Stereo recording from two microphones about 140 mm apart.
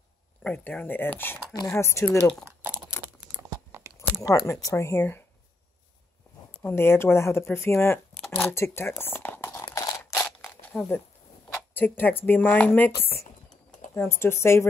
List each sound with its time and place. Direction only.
0.4 s speech: 10° left (ahead or behind)
2.4 s crumpling: 15° right (ahead or behind)
4.1 s a sound: 25° left (ahead or behind)
4.5 s speech: 20° left (ahead or behind)
6.6 s speech: 15° left (ahead or behind)
9.7 s crunch: 30° left (ahead or behind)
10.7 s speech: centre (ahead or behind)
11.5 s speech: 15° left (ahead or behind)
13.7 s typing: 65° left (ahead or behind)
14.2 s speech: 20° left (ahead or behind)